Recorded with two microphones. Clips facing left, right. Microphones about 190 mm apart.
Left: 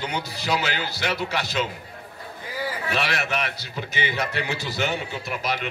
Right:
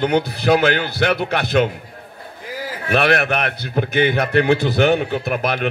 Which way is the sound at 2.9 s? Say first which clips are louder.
Right 12 dB; 60° right (ahead or behind).